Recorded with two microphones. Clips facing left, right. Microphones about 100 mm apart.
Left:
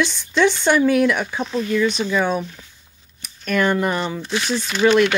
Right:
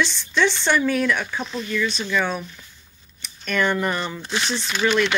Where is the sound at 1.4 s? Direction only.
35° left (ahead or behind).